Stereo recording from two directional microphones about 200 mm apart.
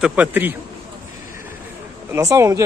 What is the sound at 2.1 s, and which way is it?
Speech, 15° right (ahead or behind).